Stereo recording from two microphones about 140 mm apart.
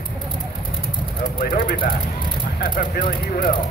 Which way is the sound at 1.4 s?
90° left.